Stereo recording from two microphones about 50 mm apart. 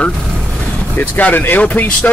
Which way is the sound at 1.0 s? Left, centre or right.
Left.